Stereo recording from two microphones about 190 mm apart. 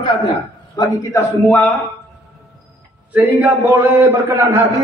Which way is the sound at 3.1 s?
10° right (ahead or behind).